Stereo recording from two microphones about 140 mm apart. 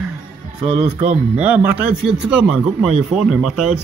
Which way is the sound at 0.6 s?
45° right (ahead or behind).